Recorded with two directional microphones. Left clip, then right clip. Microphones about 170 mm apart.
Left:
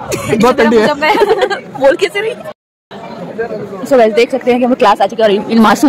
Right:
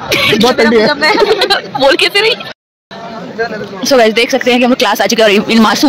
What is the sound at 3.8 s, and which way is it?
Speech, 5° left (ahead or behind).